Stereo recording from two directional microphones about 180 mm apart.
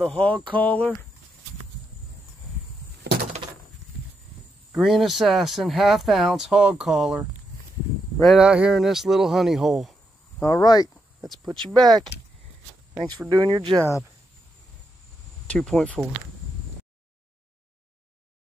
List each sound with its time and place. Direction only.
0.0 s speech: 5° left (ahead or behind)
4.7 s speech: centre (ahead or behind)
10.4 s speech: 20° left (ahead or behind)
11.8 s speech: centre (ahead or behind)
12.9 s speech: 20° right (ahead or behind)
15.4 s speech: 5° left (ahead or behind)